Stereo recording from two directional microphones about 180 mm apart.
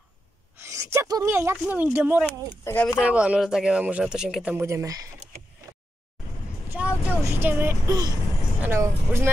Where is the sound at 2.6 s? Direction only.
15° left (ahead or behind).